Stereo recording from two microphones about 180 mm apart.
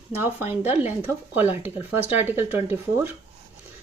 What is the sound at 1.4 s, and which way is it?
Speech, 10° right (ahead or behind).